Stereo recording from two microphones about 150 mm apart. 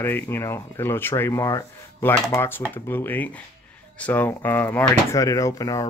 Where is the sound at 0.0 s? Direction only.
15° left (ahead or behind).